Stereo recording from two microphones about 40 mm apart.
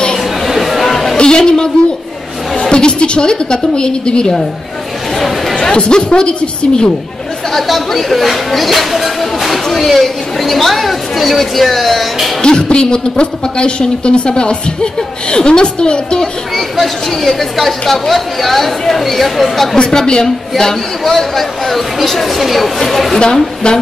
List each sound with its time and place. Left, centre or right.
0.2 s chatter: centre
1.1 s a sound: centre
2.5 s a woman's voice: left
5.6 s a woman's voice: left
7.5 s speech: centre
12.4 s a woman's voice: centre
16.5 s speech: centre
19.8 s a woman's voice: centre
23.1 s a woman's voice: centre